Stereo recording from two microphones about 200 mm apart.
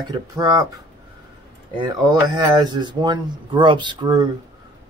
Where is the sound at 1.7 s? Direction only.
20° right (ahead or behind).